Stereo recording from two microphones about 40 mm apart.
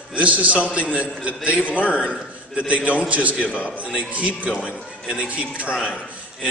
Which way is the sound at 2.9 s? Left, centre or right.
Right.